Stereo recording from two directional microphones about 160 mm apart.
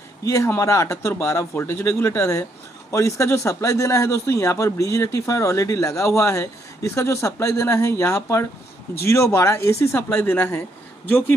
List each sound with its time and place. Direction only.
0.2 s a man's voice: 20° left (ahead or behind)